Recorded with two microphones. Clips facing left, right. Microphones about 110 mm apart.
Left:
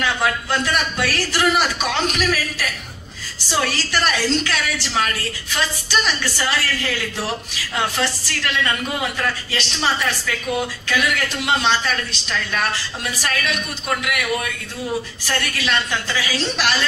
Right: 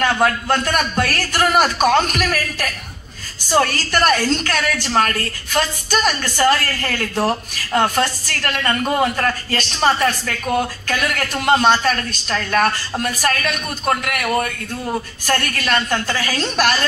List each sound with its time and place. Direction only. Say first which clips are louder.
0.0 s a woman's voice: right 4 dB; 50° right (ahead or behind)